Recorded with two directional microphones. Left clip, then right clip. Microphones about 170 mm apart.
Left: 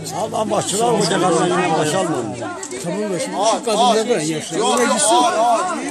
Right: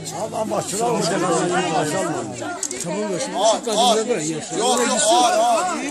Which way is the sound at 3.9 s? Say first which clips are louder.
Left 3 dB; 30° left (ahead or behind).